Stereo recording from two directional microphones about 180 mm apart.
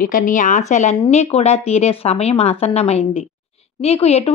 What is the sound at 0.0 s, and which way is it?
Speech, 50° left (ahead or behind).